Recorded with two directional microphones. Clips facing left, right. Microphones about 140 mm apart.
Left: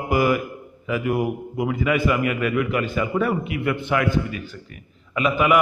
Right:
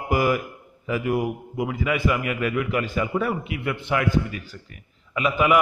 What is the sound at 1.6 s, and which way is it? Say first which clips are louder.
A man's voice: left 3 dB; 20° right (ahead or behind).